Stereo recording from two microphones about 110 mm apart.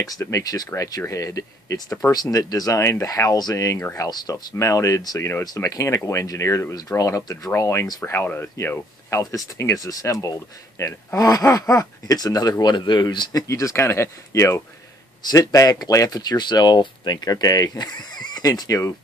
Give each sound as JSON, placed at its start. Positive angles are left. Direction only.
{"t": 0.0, "sound": "speech", "side_deg": 30}
{"t": 8.0, "sound": "speech", "side_deg": 20}